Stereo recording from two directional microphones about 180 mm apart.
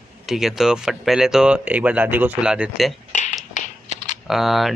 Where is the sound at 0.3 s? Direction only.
Centre (ahead or behind).